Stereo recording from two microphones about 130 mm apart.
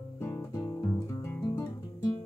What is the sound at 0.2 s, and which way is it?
Music, 20° left (ahead or behind).